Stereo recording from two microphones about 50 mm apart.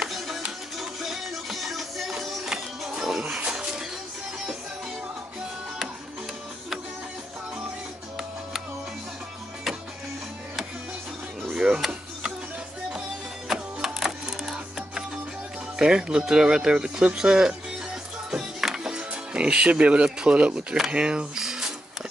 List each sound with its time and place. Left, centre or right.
0.0 s music: centre
11.5 s music: centre
13.5 s music: centre
15.8 s speech: centre
18.3 s music: centre
20.9 s speech: centre